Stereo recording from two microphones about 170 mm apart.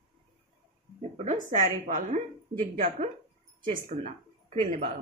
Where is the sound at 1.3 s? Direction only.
50° right (ahead or behind).